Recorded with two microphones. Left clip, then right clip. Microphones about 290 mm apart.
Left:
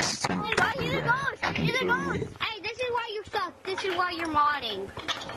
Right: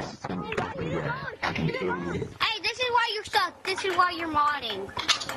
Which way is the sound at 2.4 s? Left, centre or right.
Centre.